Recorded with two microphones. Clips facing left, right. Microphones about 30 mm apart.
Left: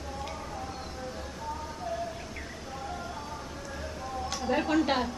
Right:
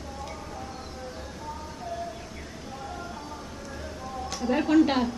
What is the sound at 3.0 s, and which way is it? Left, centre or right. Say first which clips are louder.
Music: even; centre.